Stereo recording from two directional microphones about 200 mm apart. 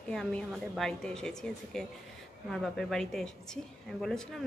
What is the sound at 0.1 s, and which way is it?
A woman's voice, centre (ahead or behind).